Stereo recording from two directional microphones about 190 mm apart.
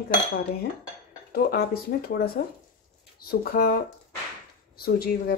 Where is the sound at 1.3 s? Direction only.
55° left (ahead or behind).